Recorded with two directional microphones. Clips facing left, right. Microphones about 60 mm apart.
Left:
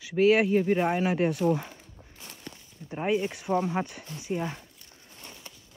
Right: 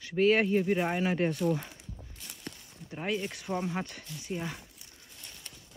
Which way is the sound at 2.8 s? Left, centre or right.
Centre.